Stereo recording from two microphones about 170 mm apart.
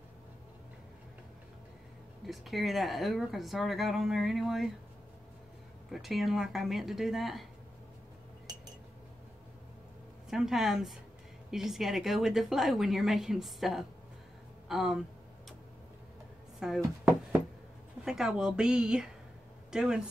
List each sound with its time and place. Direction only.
2.2 s speech: centre (ahead or behind)
5.9 s speech: centre (ahead or behind)
8.5 s glass: 25° right (ahead or behind)
10.3 s speech: 5° right (ahead or behind)
16.5 s a sound: 5° right (ahead or behind)
18.0 s speech: 5° right (ahead or behind)